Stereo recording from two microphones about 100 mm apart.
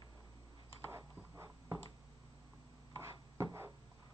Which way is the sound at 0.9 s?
30° right (ahead or behind).